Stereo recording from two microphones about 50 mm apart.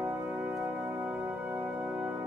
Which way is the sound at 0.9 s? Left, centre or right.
Right.